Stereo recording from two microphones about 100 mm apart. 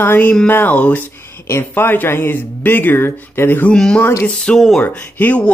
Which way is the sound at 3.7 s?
10° left (ahead or behind).